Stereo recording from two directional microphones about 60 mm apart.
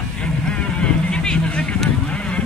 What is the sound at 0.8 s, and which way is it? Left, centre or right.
Vehicle, centre.